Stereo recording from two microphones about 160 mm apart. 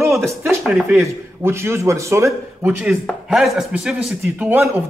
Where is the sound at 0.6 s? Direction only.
Centre (ahead or behind).